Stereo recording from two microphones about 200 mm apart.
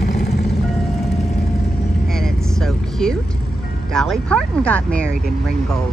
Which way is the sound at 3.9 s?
5° left (ahead or behind).